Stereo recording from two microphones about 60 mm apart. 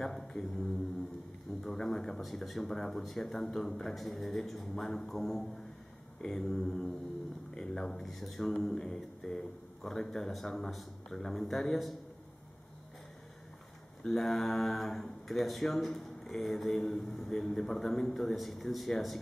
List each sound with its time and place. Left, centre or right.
0.0 s speech: centre
6.2 s mantra: centre
6.6 s speech: centre
7.5 s mantra: centre
7.9 s speech: centre
14.0 s speech: centre